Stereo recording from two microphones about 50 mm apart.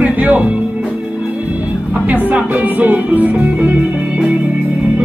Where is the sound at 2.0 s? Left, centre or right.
Right.